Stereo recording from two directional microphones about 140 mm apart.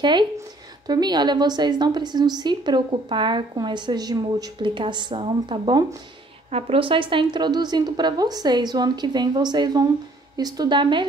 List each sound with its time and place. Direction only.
0.0 s a woman's voice: 35° right (ahead or behind)